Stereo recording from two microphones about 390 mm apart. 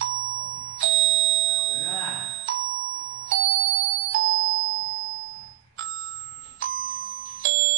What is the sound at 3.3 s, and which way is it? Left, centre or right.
Music, right.